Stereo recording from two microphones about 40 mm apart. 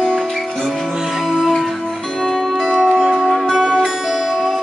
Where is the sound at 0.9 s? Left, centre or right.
Centre.